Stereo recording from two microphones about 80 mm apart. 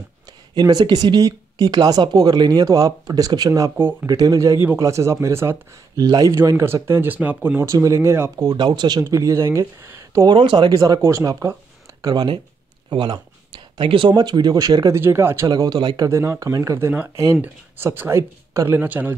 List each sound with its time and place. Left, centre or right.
0.6 s speech: right
5.9 s speech: right
8.5 s speech: right
9.0 s speech: right
10.2 s speech: right
10.7 s speech: right
12.0 s speech: right
12.9 s speech: right
14.1 s speech: right
14.9 s speech: right
15.4 s speech: right
16.1 s speech: right
17.4 s speech: right
18.7 s speech: right